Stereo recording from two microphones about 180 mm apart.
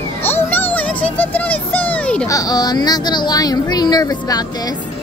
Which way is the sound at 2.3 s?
20° left (ahead or behind).